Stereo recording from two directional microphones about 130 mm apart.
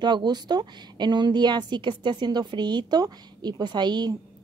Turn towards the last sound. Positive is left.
turn(degrees=-35)  # may be behind; listen again after turning